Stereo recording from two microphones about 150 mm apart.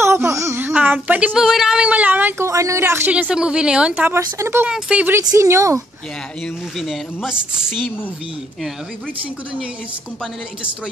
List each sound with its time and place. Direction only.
0.0 s speech: 15° right (ahead or behind)
4.6 s speech: 5° right (ahead or behind)
5.2 s a woman's voice: 20° right (ahead or behind)
6.8 s a woman's voice: 5° right (ahead or behind)